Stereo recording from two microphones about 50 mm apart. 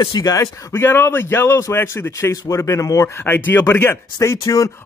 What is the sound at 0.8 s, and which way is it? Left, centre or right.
A man's voice, left.